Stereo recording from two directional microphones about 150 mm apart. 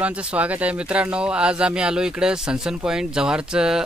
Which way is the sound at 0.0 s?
10° right (ahead or behind).